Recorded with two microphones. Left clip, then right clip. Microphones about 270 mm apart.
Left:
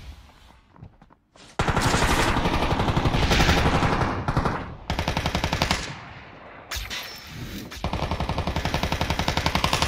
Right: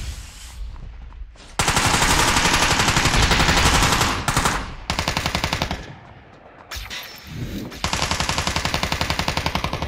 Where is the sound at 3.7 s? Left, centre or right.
Right.